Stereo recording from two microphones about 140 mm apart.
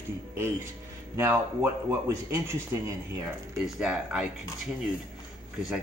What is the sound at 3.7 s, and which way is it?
Speech, 5° right (ahead or behind).